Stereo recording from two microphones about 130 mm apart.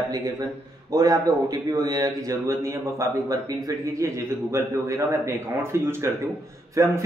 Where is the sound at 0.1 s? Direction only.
30° right (ahead or behind).